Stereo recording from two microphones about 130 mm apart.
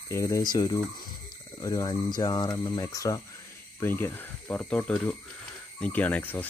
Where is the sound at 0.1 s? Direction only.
20° left (ahead or behind).